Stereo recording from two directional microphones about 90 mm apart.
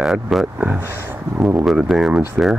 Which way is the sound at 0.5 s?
15° right (ahead or behind).